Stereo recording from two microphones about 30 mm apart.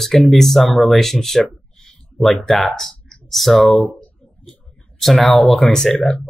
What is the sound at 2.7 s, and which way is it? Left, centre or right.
Speech, centre.